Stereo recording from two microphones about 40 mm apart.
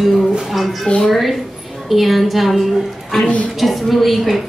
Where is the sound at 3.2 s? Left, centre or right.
Left.